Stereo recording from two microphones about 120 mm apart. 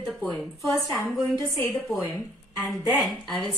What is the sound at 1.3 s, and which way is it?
Speech, 30° left (ahead or behind).